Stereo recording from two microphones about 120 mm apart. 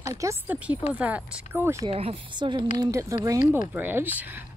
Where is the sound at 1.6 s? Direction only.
25° right (ahead or behind).